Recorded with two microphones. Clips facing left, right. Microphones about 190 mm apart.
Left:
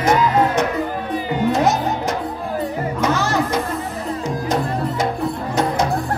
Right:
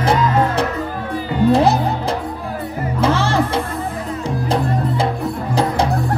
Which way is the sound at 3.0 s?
30° right (ahead or behind).